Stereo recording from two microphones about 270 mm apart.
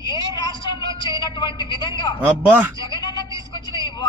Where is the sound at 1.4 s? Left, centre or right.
Centre.